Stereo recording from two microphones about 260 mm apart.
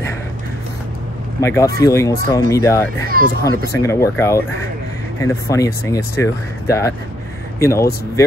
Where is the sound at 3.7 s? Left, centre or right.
Centre.